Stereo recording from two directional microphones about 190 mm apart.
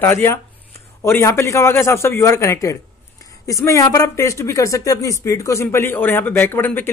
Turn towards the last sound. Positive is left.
turn(degrees=10)  # may be behind; listen again after turning